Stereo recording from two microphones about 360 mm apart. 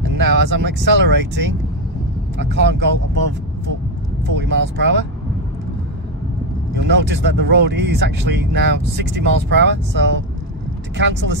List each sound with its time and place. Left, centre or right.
0.2 s speech: right
2.3 s speech: right
4.4 s speech: right
6.8 s speech: right